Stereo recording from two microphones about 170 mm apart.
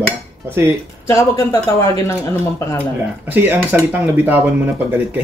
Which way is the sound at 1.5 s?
20° left (ahead or behind).